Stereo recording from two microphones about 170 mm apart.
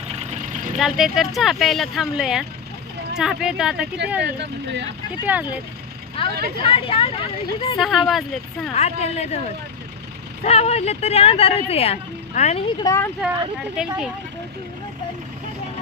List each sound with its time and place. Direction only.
0.7 s speech: centre (ahead or behind)
4.2 s speech: 90° right
5.2 s speech: 10° right (ahead or behind)
6.2 s vehicle: 30° left (ahead or behind)
6.6 s speech: 35° left (ahead or behind)
7.8 s speech: centre (ahead or behind)
8.7 s speech: 40° left (ahead or behind)
10.4 s speech: 40° left (ahead or behind)
12.8 s speech: 15° left (ahead or behind)